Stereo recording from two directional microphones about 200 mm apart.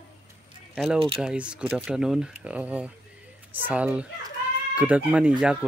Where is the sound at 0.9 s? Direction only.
25° right (ahead or behind).